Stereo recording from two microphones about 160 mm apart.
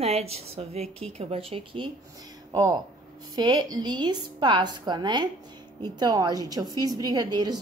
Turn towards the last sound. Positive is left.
turn(degrees=-25)  # may be behind; listen again after turning